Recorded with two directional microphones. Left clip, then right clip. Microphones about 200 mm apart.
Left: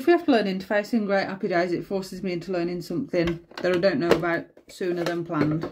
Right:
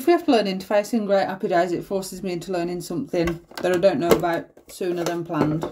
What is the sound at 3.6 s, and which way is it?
Speech, 10° left (ahead or behind).